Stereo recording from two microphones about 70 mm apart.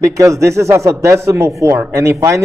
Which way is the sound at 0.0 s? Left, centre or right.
Right.